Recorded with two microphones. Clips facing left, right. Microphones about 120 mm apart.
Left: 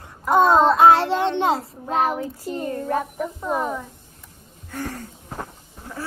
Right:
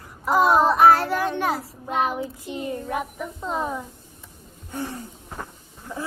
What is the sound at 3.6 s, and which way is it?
Speech, 10° right (ahead or behind).